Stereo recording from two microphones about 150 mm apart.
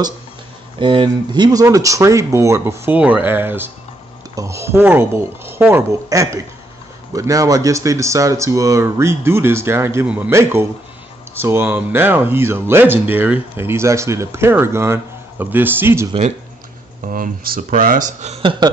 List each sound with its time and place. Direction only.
0.7 s speech: 35° right (ahead or behind); by 16.1 s 15° right (ahead or behind)
16.1 s speech: 45° right (ahead or behind)
17.1 s speech: 75° right (ahead or behind); by 18.7 s 35° right (ahead or behind)